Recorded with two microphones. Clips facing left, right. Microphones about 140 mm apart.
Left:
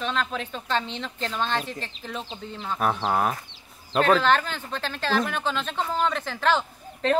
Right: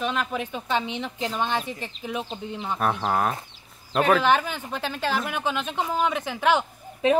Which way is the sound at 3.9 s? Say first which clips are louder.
Even; 10° right (ahead or behind).